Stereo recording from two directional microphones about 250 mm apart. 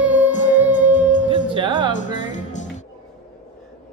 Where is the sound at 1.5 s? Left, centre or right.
Centre.